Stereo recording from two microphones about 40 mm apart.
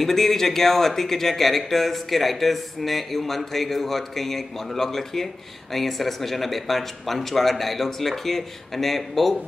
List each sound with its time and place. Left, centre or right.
0.0 s speech: centre